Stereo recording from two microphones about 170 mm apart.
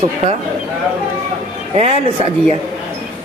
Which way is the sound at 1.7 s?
40° right (ahead or behind).